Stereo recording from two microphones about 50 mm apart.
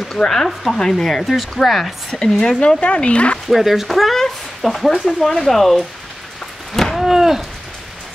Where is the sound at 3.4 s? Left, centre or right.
Centre.